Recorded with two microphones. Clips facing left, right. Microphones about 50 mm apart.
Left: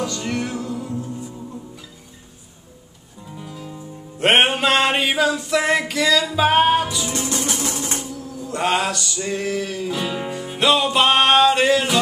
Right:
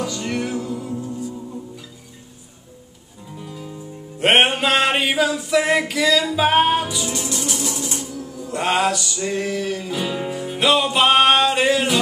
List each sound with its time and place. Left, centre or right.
0.0 s music: centre
3.3 s music: centre
7.1 s music: left
8.5 s music: centre